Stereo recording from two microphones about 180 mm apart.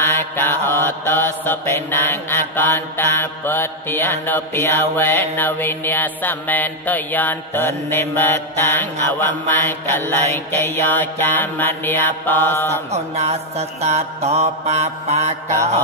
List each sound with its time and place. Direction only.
0.0 s mantra: 15° left (ahead or behind)
12.9 s mantra: 35° right (ahead or behind)